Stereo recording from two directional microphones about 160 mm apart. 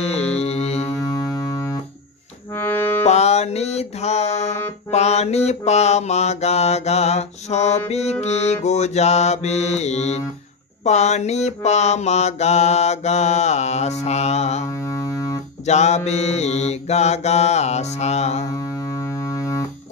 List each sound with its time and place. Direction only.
0.0 s music: 40° left (ahead or behind)
0.9 s music: 25° left (ahead or behind)
2.6 s music: 15° left (ahead or behind)
3.1 s music: 45° left (ahead or behind)
4.9 s mantra: 40° left (ahead or behind)
15.0 s music: 20° left (ahead or behind)
15.6 s mantra: 45° left (ahead or behind)